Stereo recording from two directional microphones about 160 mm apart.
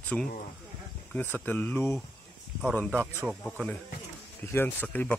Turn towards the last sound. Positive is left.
turn(degrees=10)  # may be behind; listen again after turning